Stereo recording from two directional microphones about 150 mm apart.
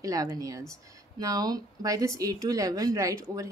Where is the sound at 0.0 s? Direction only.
25° right (ahead or behind).